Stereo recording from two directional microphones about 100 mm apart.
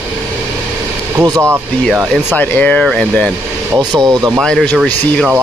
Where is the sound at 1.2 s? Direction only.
25° right (ahead or behind).